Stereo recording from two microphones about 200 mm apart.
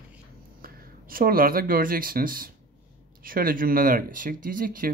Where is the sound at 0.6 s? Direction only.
45° right (ahead or behind).